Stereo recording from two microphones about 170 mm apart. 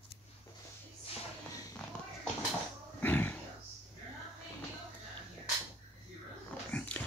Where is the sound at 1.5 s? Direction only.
20° left (ahead or behind).